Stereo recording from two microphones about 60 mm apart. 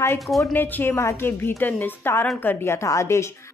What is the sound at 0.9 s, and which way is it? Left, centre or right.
Speech, left.